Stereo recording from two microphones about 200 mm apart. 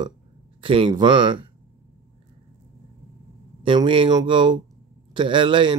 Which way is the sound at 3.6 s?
25° right (ahead or behind).